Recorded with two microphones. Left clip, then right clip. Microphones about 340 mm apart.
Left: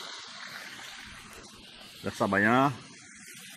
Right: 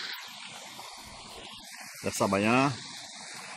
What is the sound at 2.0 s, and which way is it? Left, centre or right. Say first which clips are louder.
Speech: left 1 dB; centre.